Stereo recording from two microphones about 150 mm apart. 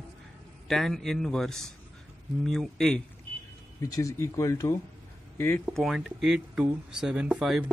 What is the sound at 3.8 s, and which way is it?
Speech, 20° left (ahead or behind).